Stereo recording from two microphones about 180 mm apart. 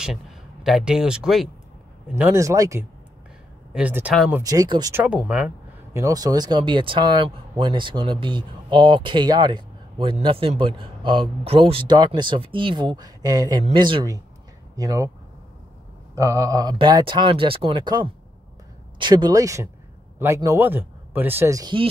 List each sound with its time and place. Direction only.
0.0 s speech: centre (ahead or behind)
4.3 s speech: 20° right (ahead or behind)
4.9 s speech: 10° right (ahead or behind)
5.9 s speech: 20° right (ahead or behind)
16.2 s speech: 20° right (ahead or behind)